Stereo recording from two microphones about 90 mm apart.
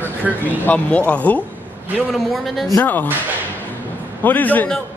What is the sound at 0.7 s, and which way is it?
Speech, 15° left (ahead or behind).